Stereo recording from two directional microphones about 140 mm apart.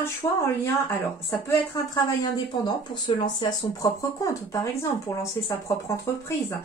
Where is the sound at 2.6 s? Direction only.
30° left (ahead or behind).